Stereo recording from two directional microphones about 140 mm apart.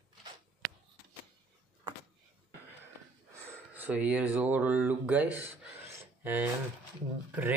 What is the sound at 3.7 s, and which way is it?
Speech, 10° right (ahead or behind).